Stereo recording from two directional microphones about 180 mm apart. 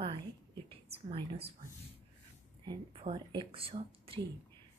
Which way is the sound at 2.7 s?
25° right (ahead or behind).